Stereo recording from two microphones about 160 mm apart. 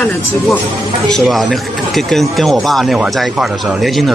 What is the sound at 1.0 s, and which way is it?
Speech, centre (ahead or behind).